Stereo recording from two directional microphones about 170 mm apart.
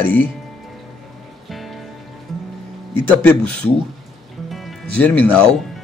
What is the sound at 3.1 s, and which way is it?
Speech, 10° left (ahead or behind).